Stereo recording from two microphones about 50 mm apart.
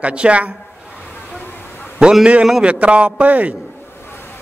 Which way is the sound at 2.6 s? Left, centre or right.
Right.